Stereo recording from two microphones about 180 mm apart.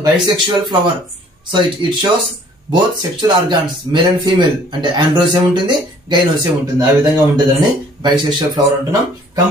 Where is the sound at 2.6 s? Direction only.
25° right (ahead or behind).